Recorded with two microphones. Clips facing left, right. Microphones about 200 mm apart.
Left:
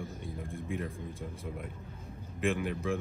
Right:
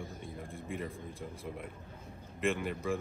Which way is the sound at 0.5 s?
Centre (ahead or behind).